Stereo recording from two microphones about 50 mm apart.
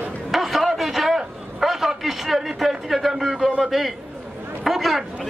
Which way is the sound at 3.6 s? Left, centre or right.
Centre.